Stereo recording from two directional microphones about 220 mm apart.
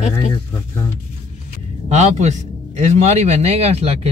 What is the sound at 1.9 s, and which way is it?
Speech, 30° right (ahead or behind).